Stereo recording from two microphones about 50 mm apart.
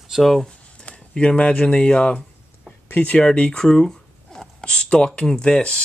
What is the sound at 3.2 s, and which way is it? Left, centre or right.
Speech, centre.